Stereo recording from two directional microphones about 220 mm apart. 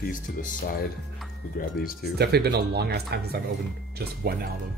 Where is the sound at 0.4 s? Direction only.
40° left (ahead or behind).